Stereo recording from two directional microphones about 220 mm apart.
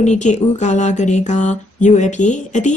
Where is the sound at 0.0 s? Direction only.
30° left (ahead or behind).